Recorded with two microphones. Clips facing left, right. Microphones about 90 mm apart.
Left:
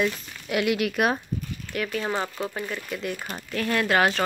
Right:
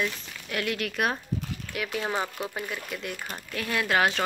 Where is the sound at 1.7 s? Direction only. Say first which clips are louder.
Left 3 dB; 5° right (ahead or behind).